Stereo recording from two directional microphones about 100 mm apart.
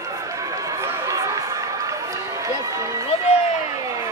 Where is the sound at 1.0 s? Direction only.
35° right (ahead or behind).